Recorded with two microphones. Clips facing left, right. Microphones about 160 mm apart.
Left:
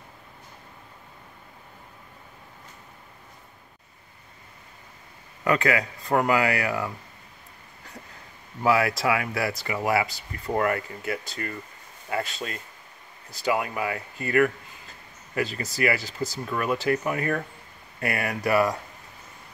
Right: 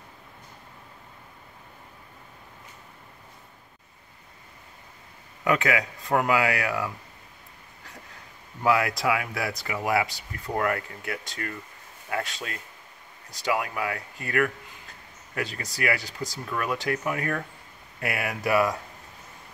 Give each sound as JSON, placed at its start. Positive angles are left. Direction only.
{"t": 5.4, "sound": "speech", "side_deg": 0}
{"t": 8.6, "sound": "speech", "side_deg": 0}